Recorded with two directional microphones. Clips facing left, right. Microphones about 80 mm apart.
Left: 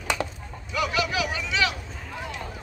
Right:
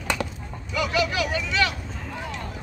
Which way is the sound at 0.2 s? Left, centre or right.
Centre.